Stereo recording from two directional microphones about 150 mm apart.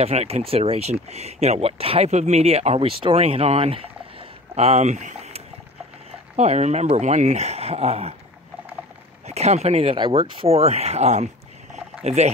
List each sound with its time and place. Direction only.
0.0 s speech: 45° right (ahead or behind)
9.3 s speech: 45° right (ahead or behind)
11.7 s a sound: 50° right (ahead or behind)